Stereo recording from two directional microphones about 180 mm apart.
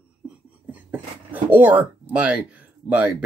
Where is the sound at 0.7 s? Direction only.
10° right (ahead or behind).